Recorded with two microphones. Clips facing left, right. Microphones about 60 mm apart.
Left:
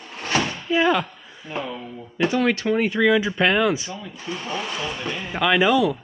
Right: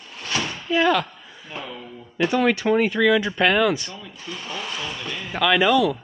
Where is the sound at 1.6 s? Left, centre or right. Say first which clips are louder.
Left 5 dB; centre.